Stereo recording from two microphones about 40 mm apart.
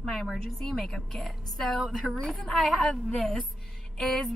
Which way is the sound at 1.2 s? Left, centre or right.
Centre.